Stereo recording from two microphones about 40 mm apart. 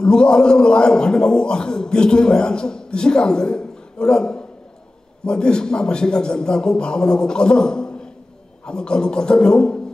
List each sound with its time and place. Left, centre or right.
0.0 s a man's voice: left